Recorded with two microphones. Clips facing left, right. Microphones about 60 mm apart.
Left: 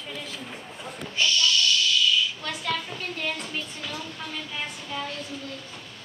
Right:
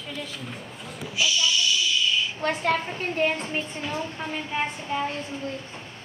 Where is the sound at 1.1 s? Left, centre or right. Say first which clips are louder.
Even; centre.